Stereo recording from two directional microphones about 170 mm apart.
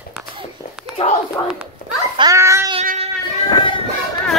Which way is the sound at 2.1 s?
20° right (ahead or behind).